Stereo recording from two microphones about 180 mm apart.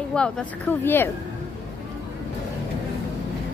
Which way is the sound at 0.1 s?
5° left (ahead or behind).